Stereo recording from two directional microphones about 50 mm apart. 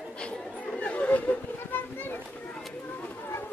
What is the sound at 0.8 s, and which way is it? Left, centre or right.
Chatter, left.